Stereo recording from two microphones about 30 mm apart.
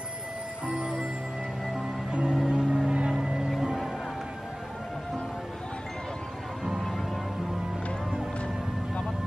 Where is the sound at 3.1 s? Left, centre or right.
Right.